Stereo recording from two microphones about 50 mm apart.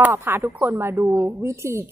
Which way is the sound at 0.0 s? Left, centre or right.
Right.